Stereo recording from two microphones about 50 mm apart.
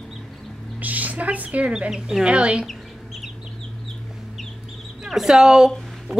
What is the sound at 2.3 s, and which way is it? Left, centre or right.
Speech, right.